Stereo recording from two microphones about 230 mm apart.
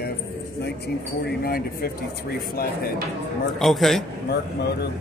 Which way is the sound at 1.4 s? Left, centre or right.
Left.